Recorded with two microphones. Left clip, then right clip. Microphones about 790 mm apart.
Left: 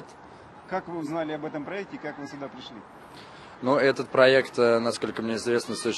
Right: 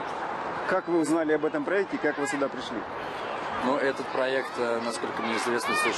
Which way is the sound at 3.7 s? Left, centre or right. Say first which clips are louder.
Left 6 dB; left.